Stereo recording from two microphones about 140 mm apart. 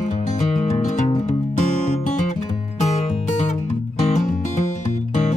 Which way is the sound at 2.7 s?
55° left (ahead or behind).